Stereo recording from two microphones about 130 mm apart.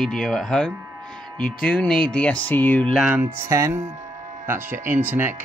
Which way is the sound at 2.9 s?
10° right (ahead or behind).